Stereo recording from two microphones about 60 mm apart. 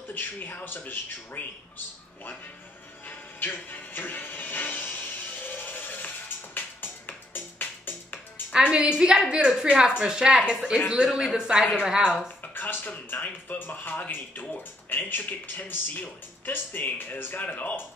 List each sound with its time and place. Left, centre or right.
0.1 s speech: left
3.1 s music: left
8.6 s a woman's voice: centre
12.5 s speech: left